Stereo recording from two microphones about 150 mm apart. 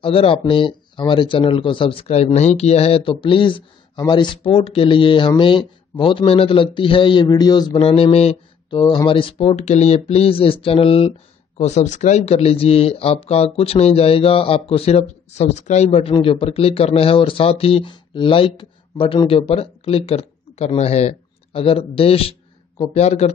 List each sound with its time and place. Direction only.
0.0 s speech: 40° left (ahead or behind)
7.8 s speech: 40° left (ahead or behind)
8.6 s speech: 30° left (ahead or behind); by 23.3 s 45° left (ahead or behind)